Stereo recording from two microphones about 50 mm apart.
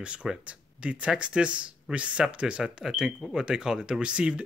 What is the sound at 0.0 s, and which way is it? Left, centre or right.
Speech, right.